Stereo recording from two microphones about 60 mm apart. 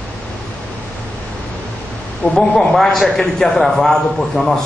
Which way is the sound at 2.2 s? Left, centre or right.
Centre.